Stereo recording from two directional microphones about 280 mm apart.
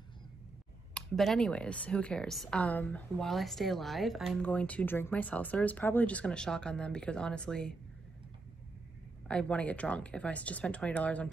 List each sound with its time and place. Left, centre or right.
0.9 s speech: centre
9.3 s speech: centre